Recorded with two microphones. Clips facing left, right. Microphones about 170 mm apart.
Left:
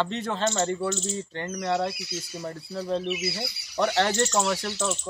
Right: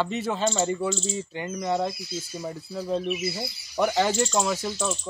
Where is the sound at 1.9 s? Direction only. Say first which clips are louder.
Right 1 dB; 75° left (ahead or behind).